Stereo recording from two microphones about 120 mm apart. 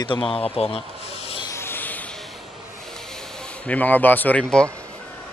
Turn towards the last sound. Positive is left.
turn(degrees=10)  # may be behind; listen again after turning